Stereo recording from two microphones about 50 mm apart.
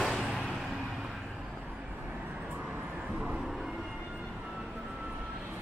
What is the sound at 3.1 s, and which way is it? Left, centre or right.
Vehicle, right.